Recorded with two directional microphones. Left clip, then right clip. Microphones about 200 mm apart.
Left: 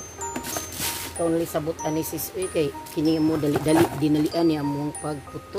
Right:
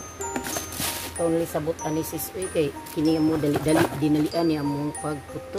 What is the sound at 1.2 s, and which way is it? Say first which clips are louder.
Speech: even; 30° left (ahead or behind).